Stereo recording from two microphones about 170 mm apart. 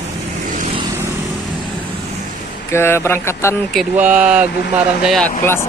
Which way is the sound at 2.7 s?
15° left (ahead or behind).